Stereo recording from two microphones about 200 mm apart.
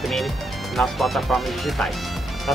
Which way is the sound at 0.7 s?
Centre (ahead or behind).